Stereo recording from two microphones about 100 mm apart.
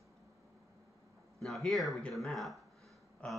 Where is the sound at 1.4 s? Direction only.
Centre (ahead or behind).